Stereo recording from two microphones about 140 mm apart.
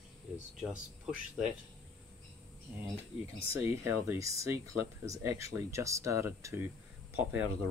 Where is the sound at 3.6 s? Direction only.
20° right (ahead or behind).